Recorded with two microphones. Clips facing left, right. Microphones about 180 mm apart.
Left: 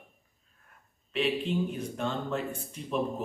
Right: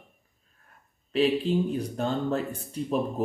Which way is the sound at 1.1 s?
35° right (ahead or behind).